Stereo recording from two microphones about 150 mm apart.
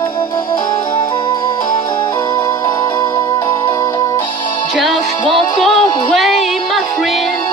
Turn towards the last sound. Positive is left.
turn(degrees=0)  # may be behind; listen again after turning